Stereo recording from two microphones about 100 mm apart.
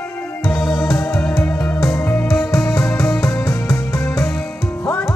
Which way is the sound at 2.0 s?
20° left (ahead or behind).